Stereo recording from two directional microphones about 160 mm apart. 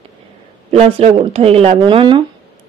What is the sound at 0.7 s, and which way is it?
Speech, 40° right (ahead or behind).